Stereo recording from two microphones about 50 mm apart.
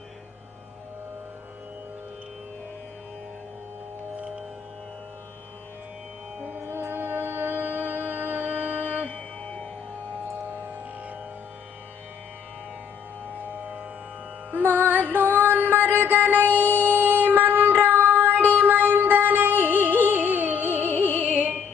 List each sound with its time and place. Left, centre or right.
6.7 s music: right
14.5 s music: right
16.6 s music: left
16.9 s music: right
21.1 s music: left